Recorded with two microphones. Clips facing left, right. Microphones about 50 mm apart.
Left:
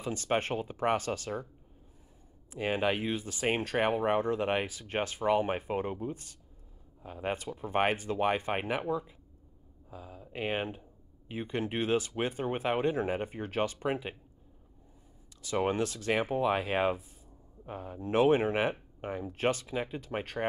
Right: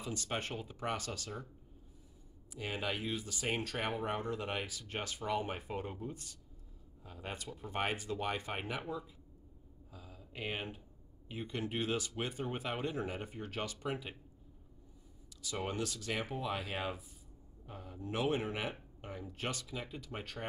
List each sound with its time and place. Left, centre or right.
0.0 s speech: left
2.5 s speech: left
15.6 s speech: left